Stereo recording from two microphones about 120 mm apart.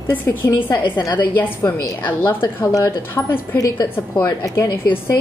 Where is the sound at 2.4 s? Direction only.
35° left (ahead or behind).